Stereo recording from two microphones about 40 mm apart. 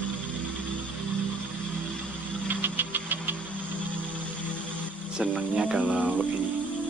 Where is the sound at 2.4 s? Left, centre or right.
Right.